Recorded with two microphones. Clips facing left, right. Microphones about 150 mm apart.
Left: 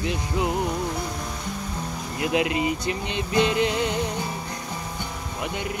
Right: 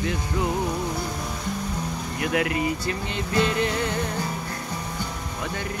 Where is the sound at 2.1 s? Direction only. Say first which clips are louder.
Left 1 dB; 20° left (ahead or behind).